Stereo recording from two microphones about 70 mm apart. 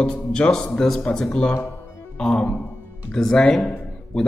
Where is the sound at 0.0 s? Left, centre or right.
Centre.